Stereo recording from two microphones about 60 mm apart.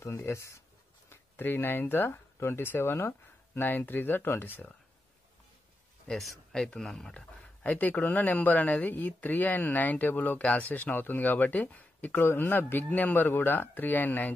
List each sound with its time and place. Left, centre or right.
0.0 s speech: left
6.0 s speech: centre
7.2 s speech: left